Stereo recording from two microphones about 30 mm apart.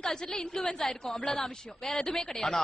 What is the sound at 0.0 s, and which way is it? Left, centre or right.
A man's voice, centre.